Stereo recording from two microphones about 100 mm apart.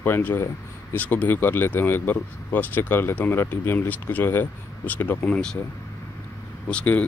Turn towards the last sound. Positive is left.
turn(degrees=15)  # may be behind; listen again after turning